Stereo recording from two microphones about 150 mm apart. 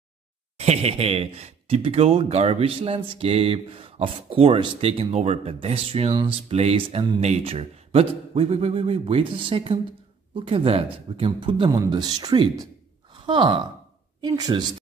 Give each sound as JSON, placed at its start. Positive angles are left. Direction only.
{"t": 0.6, "sound": "speech", "side_deg": -45}